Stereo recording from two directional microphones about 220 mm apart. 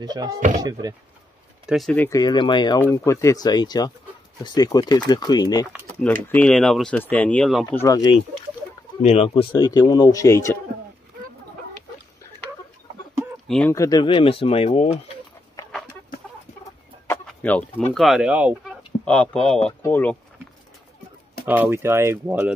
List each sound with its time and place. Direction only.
0.0 s speech: 20° right (ahead or behind)
1.7 s speech: centre (ahead or behind)
2.0 s speech: 20° left (ahead or behind)
6.2 s speech: 5° left (ahead or behind)
7.6 s speech: 15° left (ahead or behind)
13.5 s speech: 5° left (ahead or behind); by 15.0 s 25° left (ahead or behind)
17.1 s speech: 5° left (ahead or behind)
21.5 s speech: 10° right (ahead or behind)